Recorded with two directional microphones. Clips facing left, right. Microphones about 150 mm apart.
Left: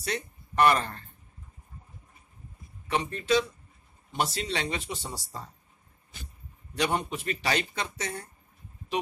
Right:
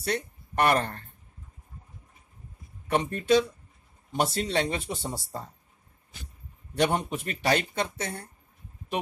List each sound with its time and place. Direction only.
0.0 s speech: 55° right (ahead or behind)
2.9 s speech: 50° right (ahead or behind)
6.7 s speech: 50° right (ahead or behind)